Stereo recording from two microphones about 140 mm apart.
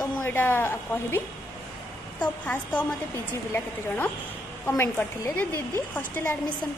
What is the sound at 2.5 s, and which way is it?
Speech, 10° left (ahead or behind).